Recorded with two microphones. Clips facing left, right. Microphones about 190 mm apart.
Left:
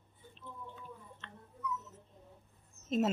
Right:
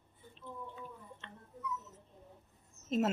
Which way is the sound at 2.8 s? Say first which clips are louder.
Even; 20° right (ahead or behind).